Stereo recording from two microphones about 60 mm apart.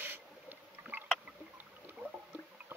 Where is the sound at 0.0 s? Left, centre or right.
Right.